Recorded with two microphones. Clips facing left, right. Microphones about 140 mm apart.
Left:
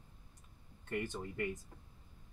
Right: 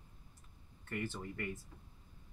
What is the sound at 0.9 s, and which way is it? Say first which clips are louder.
Speech: left 2 dB; 15° left (ahead or behind).